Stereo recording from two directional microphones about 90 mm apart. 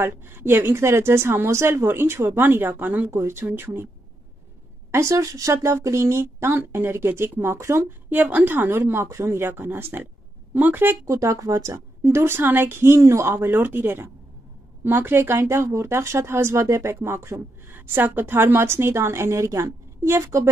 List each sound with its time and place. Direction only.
0.0 s speech: 25° right (ahead or behind)
4.9 s speech: 35° right (ahead or behind)
8.2 s speech: 20° right (ahead or behind)
11.1 s speech: 35° right (ahead or behind)
12.0 s speech: 25° right (ahead or behind)